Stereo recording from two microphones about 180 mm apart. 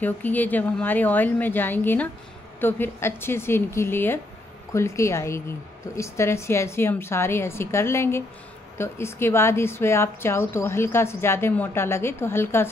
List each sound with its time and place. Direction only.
0.0 s a woman's voice: 10° left (ahead or behind)